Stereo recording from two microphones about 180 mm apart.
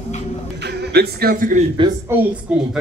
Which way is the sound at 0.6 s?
65° right (ahead or behind).